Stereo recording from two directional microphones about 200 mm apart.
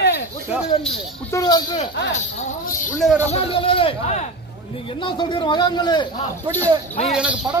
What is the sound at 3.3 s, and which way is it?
A man's voice, 25° left (ahead or behind).